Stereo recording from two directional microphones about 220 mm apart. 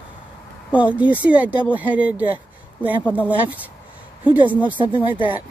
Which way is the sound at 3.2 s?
5° right (ahead or behind).